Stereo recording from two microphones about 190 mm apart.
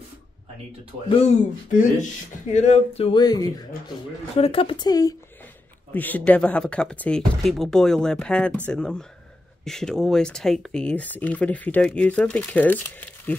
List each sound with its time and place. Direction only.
1.0 s speech: 30° left (ahead or behind)
2.5 s speech: 35° left (ahead or behind); by 5.5 s 20° left (ahead or behind)
5.9 s speech: 10° left (ahead or behind)